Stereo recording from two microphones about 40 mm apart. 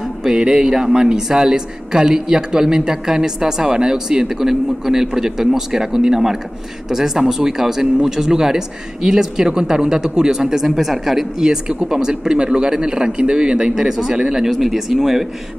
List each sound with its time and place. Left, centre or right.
0.2 s speech: centre